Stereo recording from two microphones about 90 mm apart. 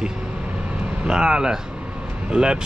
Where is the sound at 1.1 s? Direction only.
10° right (ahead or behind).